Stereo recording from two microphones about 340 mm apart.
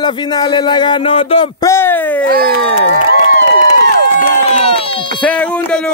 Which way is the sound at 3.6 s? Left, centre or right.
Left.